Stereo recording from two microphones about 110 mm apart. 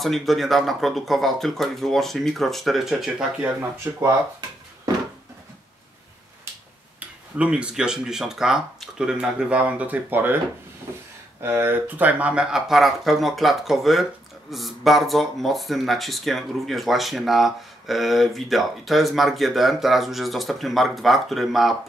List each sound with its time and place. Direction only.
0.0 s speech: centre (ahead or behind)
3.9 s speech: 20° right (ahead or behind)
7.0 s speech: 10° right (ahead or behind)
11.4 s speech: 20° right (ahead or behind); by 21.7 s centre (ahead or behind)